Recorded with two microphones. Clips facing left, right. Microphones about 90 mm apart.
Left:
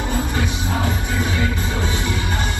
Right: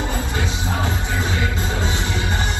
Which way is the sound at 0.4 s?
25° right (ahead or behind).